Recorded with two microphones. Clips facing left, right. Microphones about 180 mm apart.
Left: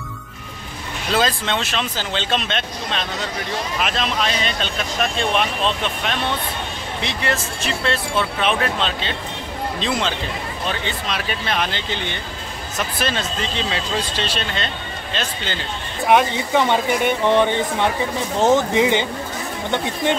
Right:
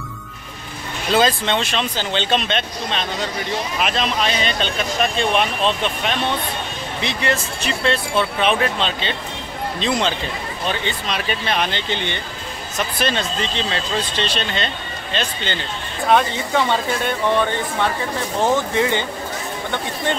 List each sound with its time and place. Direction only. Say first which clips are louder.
1.1 s speech: right 3 dB; centre (ahead or behind)
16.1 s speech: left 1 dB; 15° left (ahead or behind)